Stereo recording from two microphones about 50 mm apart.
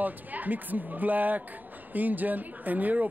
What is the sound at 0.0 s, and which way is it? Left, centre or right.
Speech, right.